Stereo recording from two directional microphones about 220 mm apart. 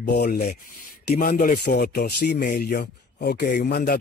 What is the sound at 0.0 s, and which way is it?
Speech, 45° left (ahead or behind).